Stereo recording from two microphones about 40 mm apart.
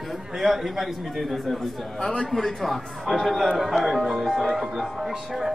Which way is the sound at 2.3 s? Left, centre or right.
Centre.